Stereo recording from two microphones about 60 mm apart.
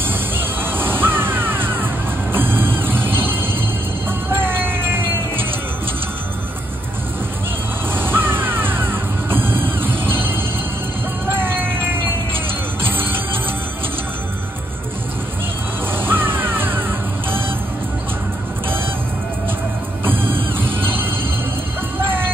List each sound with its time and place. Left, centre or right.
0.0 s crow: right
2.3 s vehicle: right
7.9 s music: right
11.2 s vehicle: right
12.8 s music: right
15.9 s crow: right
20.1 s music: right